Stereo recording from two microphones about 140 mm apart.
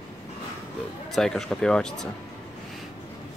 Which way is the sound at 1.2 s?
5° left (ahead or behind).